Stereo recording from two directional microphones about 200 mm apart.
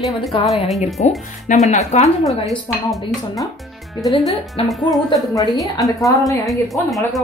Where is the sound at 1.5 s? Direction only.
35° left (ahead or behind).